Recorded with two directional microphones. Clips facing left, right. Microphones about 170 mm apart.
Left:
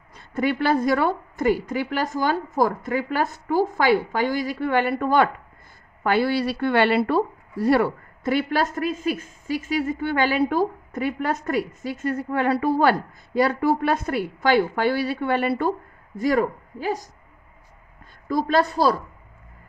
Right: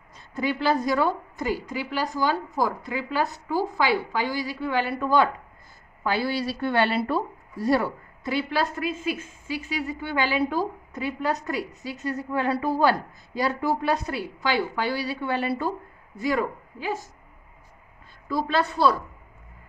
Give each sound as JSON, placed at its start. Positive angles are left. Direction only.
{"t": 0.1, "sound": "a woman's voice", "side_deg": 60}
{"t": 16.2, "sound": "a woman's voice", "side_deg": 45}
{"t": 18.3, "sound": "a woman's voice", "side_deg": 40}